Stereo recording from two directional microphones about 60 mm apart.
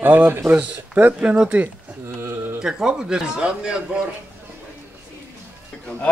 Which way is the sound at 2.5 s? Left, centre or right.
Centre.